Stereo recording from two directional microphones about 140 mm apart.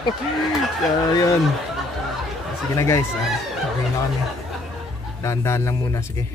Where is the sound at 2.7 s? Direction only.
20° left (ahead or behind).